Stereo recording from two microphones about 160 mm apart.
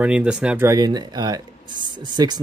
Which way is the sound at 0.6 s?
25° right (ahead or behind).